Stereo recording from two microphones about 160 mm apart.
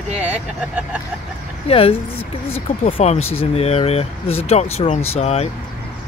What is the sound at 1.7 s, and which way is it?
Speech, 35° left (ahead or behind).